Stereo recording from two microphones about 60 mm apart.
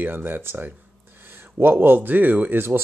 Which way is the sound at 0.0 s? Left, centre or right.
Right.